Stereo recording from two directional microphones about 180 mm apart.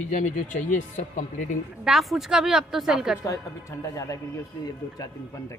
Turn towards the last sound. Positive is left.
turn(degrees=20)  # may be behind; listen again after turning